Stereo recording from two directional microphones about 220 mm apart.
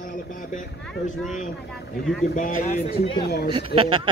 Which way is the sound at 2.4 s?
35° left (ahead or behind).